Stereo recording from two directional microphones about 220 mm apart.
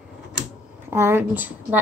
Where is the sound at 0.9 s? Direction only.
10° right (ahead or behind).